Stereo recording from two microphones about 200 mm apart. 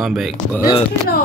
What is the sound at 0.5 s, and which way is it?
Speech, 15° left (ahead or behind).